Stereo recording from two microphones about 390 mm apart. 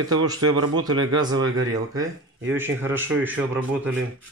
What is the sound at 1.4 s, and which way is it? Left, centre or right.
Speech, right.